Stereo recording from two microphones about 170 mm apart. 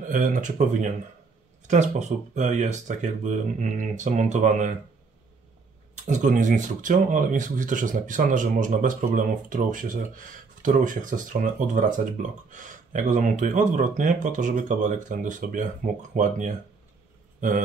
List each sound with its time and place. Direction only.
0.0 s speech: 50° right (ahead or behind)
6.0 s speech: 45° right (ahead or behind)